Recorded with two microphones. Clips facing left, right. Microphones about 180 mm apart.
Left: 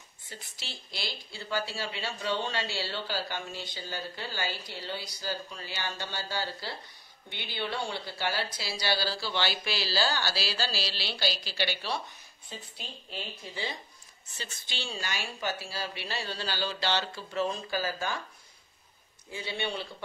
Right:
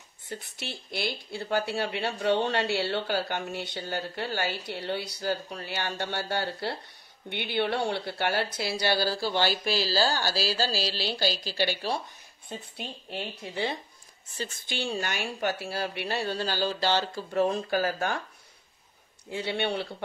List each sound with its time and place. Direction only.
0.3 s speech: 60° right (ahead or behind)
12.4 s speech: 60° right (ahead or behind)
14.3 s speech: 50° right (ahead or behind)
19.3 s speech: 65° right (ahead or behind)